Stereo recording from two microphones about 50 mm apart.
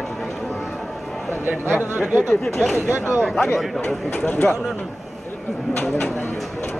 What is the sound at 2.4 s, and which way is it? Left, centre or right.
A man's voice, centre.